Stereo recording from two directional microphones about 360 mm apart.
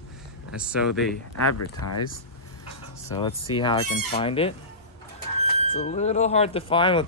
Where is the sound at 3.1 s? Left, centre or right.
Centre.